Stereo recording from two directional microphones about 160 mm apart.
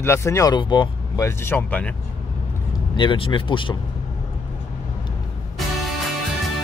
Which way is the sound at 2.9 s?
30° left (ahead or behind).